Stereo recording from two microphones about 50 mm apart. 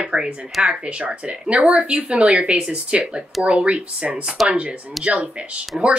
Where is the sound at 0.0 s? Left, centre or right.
Centre.